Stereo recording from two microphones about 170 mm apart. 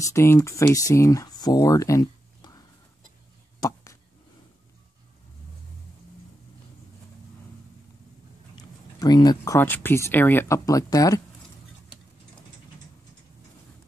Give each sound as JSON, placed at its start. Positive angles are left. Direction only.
{"t": 0.0, "sound": "speech", "side_deg": 15}
{"t": 9.0, "sound": "speech", "side_deg": 25}